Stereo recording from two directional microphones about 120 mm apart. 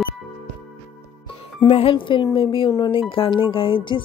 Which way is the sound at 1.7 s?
55° left (ahead or behind).